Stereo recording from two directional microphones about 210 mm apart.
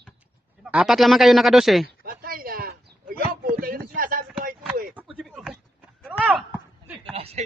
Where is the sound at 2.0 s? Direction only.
45° right (ahead or behind).